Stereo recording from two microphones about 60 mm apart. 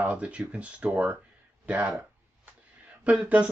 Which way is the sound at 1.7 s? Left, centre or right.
Right.